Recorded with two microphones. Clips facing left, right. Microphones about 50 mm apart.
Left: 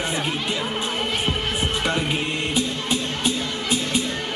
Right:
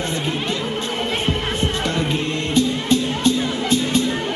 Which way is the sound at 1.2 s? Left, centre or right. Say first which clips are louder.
Right 3 dB; centre.